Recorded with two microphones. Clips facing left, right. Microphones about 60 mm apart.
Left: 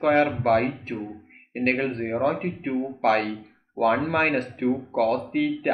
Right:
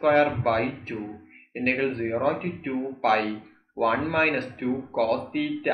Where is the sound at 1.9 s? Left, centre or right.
Centre.